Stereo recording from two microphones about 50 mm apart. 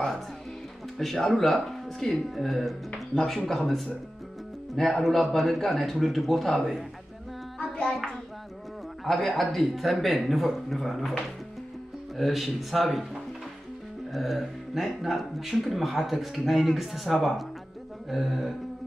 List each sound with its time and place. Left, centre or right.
0.9 s speech: centre
7.5 s hands: centre
9.0 s speech: centre
12.2 s speech: centre